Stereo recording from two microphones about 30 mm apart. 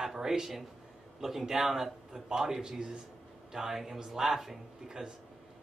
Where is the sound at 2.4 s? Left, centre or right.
Right.